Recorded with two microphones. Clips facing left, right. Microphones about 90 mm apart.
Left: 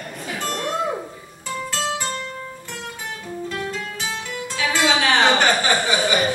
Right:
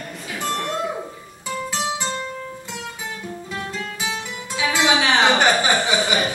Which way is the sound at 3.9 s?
15° right (ahead or behind).